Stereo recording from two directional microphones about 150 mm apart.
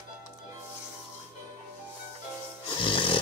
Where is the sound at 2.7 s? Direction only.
35° left (ahead or behind).